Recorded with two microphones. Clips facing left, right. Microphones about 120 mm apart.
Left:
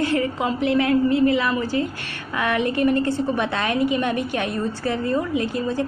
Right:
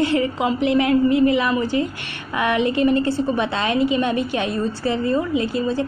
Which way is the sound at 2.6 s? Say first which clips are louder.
Right 2 dB; 55° left (ahead or behind).